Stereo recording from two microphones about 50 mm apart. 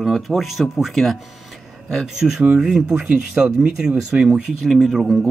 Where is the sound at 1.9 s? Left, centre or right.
Centre.